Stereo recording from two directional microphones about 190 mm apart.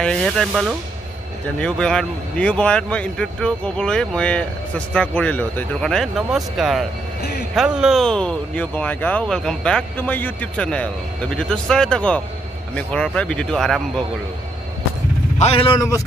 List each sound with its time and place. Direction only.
0.0 s a man's voice: 5° left (ahead or behind)
7.2 s a sound: 60° left (ahead or behind)
7.5 s a man's voice: 5° right (ahead or behind)
15.3 s a man's voice: 30° left (ahead or behind)